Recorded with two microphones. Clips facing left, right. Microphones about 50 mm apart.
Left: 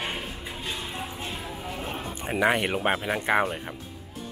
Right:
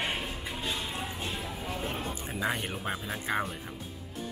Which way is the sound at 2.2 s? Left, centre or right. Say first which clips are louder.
Left 11 dB; left.